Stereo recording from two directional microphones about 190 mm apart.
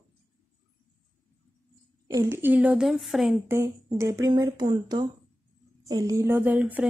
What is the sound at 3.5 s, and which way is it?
Speech, 15° right (ahead or behind).